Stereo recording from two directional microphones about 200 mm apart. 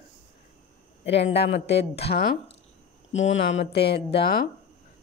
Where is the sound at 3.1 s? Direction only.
35° left (ahead or behind).